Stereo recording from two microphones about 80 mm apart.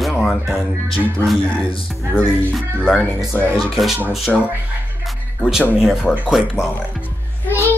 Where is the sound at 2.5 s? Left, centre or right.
Centre.